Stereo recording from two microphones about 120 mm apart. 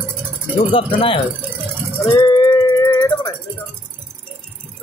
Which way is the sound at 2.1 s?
35° left (ahead or behind).